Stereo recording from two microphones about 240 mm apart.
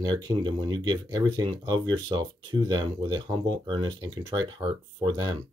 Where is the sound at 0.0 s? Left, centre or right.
Centre.